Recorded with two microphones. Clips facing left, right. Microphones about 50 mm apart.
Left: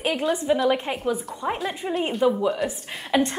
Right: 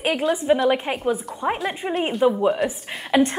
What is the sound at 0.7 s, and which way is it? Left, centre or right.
A woman's voice, centre.